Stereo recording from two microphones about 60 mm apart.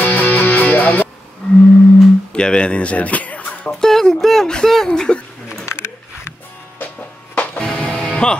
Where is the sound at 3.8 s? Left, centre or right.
Centre.